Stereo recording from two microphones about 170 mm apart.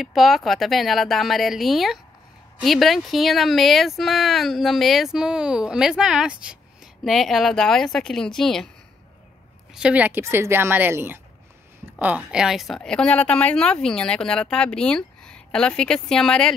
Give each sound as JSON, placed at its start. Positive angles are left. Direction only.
{"t": 0.0, "sound": "speech", "side_deg": 0}
{"t": 9.8, "sound": "a woman's voice", "side_deg": -5}